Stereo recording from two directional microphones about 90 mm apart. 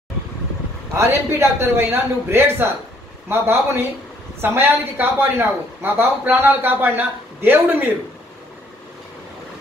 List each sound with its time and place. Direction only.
0.9 s a woman's voice: 30° right (ahead or behind)